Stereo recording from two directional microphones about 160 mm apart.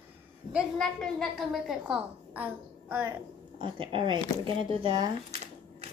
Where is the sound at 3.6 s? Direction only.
35° right (ahead or behind).